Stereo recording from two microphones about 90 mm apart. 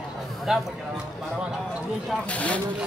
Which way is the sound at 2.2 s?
15° left (ahead or behind).